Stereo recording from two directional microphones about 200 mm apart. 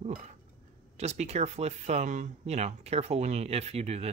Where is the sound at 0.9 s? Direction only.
35° right (ahead or behind).